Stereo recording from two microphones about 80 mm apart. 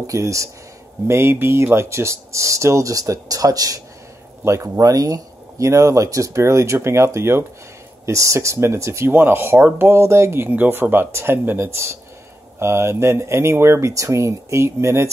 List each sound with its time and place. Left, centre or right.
0.0 s speech: right